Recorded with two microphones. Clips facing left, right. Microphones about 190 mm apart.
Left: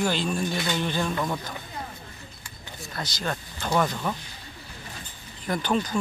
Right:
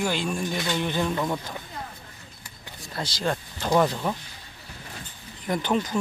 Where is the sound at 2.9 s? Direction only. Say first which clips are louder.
Right 4 dB; 30° right (ahead or behind).